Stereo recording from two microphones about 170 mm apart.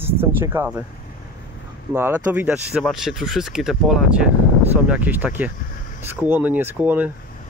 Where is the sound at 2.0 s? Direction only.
10° right (ahead or behind).